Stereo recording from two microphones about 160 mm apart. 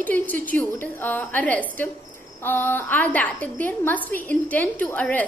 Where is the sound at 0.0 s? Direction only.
10° left (ahead or behind).